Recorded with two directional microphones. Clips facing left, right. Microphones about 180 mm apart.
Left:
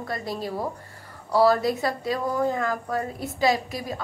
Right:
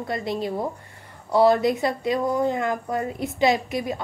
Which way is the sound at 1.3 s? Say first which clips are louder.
Right 2 dB; 20° right (ahead or behind).